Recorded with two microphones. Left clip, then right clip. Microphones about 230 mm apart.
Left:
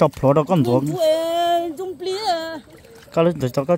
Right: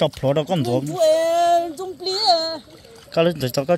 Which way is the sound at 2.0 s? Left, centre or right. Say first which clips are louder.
Right 4 dB; left.